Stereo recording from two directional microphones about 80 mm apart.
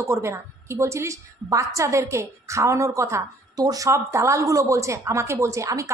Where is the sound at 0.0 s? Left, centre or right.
Right.